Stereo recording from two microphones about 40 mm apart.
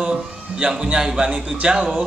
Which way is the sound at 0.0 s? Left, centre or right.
Centre.